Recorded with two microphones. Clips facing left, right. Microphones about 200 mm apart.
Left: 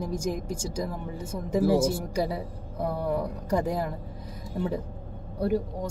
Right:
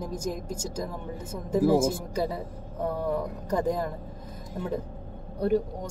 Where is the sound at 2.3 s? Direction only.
10° left (ahead or behind).